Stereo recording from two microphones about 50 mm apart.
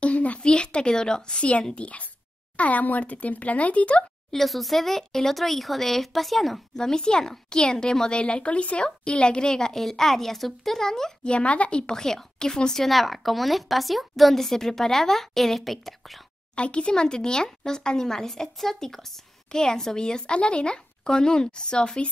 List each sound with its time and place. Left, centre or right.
0.0 s a sound: left
0.5 s a child's voice: centre
2.5 s speech: left
4.3 s a woman's voice: centre
6.8 s a child's voice: centre
11.2 s speech: left
11.8 s a woman's voice: centre
16.5 s a child's voice: left